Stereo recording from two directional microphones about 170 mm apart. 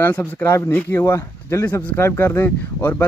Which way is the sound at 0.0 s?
10° left (ahead or behind).